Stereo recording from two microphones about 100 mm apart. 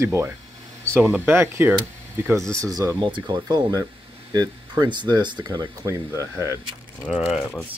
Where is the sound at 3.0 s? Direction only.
50° right (ahead or behind).